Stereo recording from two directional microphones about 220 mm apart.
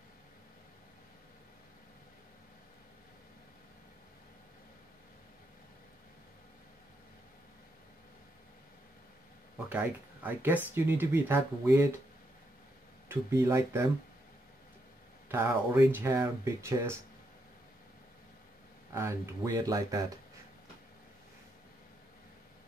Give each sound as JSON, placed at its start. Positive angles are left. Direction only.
{"t": 9.7, "sound": "speech", "side_deg": -10}
{"t": 13.1, "sound": "speech", "side_deg": -15}
{"t": 15.2, "sound": "speech", "side_deg": -10}
{"t": 18.9, "sound": "speech", "side_deg": -15}